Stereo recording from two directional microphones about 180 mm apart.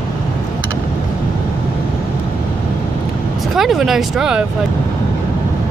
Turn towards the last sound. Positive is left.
turn(degrees=-5)  # may be behind; listen again after turning